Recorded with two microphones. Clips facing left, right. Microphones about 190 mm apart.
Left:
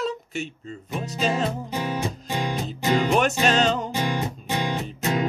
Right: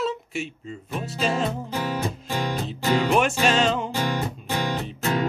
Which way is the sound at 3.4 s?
Centre (ahead or behind).